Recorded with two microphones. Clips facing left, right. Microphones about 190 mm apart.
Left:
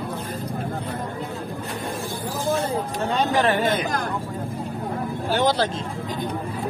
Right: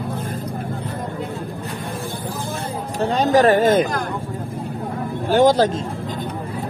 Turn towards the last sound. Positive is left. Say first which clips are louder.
# right 7 dB
turn(degrees=-45)  # may be behind; listen again after turning